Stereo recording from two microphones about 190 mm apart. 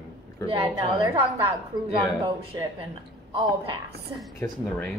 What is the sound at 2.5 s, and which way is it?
Speech, 20° right (ahead or behind).